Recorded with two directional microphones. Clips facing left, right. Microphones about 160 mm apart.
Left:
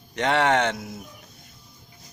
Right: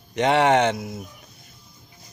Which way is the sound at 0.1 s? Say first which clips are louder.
Right 3 dB; 15° right (ahead or behind).